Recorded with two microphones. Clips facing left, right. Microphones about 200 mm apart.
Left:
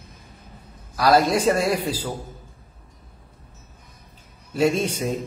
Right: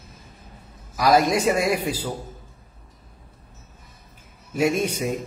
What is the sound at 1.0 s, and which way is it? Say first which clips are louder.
Speech: left 1 dB; 10° right (ahead or behind).